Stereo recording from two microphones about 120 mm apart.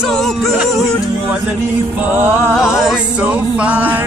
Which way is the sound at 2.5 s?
5° right (ahead or behind).